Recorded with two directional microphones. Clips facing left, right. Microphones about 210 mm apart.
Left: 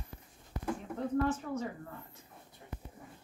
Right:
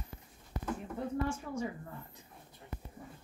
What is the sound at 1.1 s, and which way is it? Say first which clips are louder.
Speech: left 5 dB; 10° right (ahead or behind).